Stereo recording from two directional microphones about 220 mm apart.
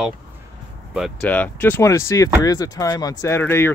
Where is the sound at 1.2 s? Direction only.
5° left (ahead or behind).